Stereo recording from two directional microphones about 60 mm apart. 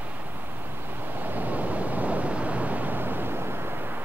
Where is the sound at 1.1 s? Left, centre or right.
Right.